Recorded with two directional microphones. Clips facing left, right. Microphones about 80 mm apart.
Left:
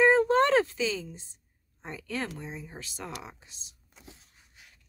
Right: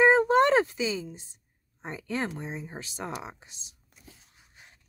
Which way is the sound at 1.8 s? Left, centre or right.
Right.